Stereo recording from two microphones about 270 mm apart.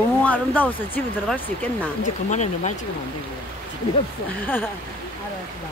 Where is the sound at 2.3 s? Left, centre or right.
Left.